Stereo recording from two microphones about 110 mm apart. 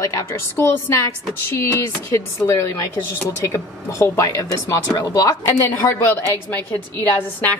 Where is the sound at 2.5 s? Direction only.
30° left (ahead or behind).